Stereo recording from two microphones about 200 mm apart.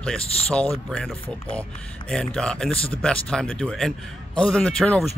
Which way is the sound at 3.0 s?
5° left (ahead or behind).